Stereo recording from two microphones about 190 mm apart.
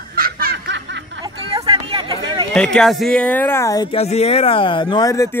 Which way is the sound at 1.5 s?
30° right (ahead or behind).